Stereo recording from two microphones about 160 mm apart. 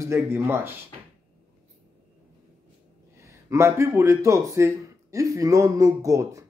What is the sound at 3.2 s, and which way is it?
Speech, 15° right (ahead or behind).